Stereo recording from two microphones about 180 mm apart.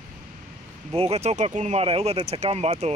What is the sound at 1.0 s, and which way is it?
Speech, 35° right (ahead or behind).